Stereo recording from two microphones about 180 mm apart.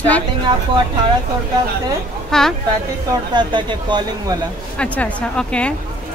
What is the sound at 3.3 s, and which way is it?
Speech, 25° right (ahead or behind).